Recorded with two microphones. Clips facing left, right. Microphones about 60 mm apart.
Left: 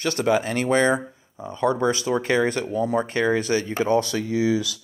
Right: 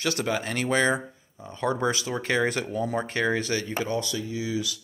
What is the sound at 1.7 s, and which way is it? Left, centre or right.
Speech, centre.